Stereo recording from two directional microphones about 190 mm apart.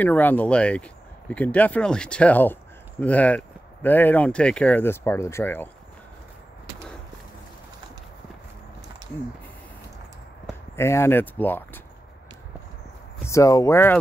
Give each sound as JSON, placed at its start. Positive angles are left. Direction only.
{"t": 0.0, "sound": "speech", "side_deg": 10}
{"t": 10.8, "sound": "speech", "side_deg": 15}
{"t": 13.3, "sound": "speech", "side_deg": 15}